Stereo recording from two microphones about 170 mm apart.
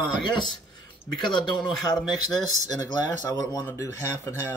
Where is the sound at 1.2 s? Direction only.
25° left (ahead or behind).